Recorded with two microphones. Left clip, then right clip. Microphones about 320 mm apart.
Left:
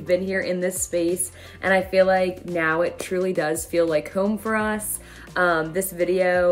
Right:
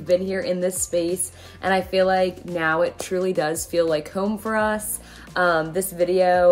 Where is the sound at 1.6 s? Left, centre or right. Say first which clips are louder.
Left 1 dB; centre.